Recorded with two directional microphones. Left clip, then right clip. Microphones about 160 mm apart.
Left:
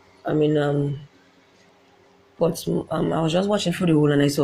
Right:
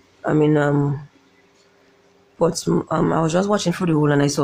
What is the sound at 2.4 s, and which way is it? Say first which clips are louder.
Speech: right 3 dB; 15° right (ahead or behind).